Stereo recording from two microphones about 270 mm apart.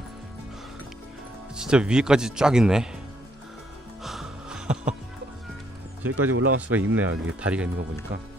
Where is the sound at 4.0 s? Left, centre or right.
Centre.